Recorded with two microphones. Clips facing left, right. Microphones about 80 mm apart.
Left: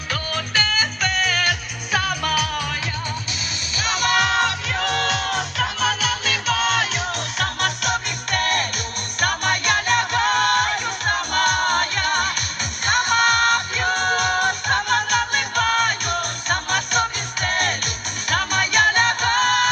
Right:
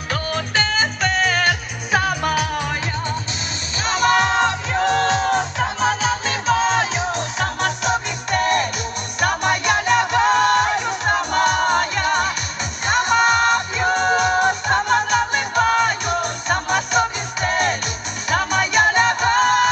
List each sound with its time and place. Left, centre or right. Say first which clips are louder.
0.1 s music: right 3 dB; right
3.8 s music: right 4 dB; right
7.0 s music: right 3 dB; centre
9.4 s music: right 2 dB; centre